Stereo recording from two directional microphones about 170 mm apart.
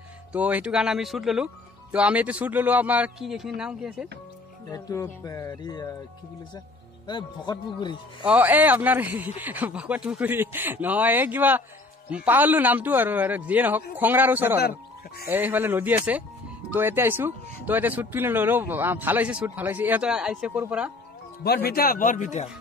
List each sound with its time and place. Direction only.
0.3 s speech: 10° right (ahead or behind)
4.6 s speech: 20° left (ahead or behind)
7.1 s speech: 25° left (ahead or behind)
8.3 s speech: 10° right (ahead or behind)
21.6 s speech: 60° left (ahead or behind); by 22.5 s 45° left (ahead or behind)